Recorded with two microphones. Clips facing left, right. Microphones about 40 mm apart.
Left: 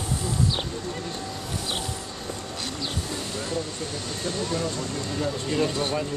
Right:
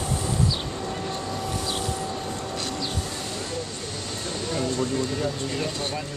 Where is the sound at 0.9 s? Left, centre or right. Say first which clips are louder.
Right 3 dB; centre.